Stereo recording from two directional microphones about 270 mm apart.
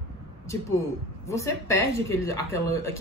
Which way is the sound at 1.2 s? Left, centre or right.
Centre.